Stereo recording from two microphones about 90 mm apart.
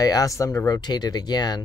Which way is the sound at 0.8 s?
50° left (ahead or behind).